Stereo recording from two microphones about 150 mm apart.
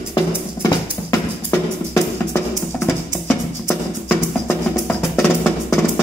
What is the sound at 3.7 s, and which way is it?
Music, 10° left (ahead or behind).